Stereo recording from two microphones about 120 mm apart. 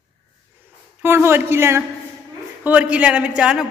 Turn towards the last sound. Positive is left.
turn(degrees=-5)  # may be behind; listen again after turning